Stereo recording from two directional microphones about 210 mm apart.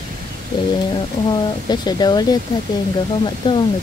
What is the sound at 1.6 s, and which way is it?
Speech, 20° left (ahead or behind).